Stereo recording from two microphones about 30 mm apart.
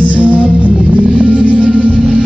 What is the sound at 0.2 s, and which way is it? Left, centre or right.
Music, left.